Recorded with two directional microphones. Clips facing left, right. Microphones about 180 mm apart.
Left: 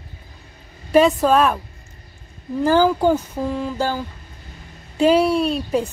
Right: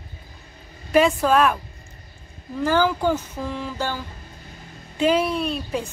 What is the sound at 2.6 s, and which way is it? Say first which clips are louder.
Speech: left 4 dB; 35° left (ahead or behind).